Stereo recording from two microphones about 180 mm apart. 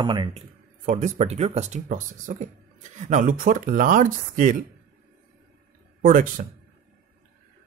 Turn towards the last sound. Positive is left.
turn(degrees=-45)  # may be behind; listen again after turning